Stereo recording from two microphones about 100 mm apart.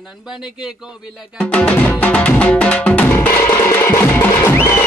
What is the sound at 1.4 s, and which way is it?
Music, 15° left (ahead or behind).